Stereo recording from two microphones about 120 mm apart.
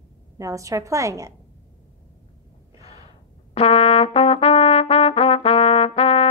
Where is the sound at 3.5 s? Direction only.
55° left (ahead or behind).